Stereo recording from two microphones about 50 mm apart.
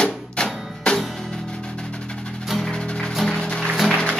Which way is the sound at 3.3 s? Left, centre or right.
Centre.